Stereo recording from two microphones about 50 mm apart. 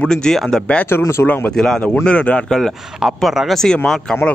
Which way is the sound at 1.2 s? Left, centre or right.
Left.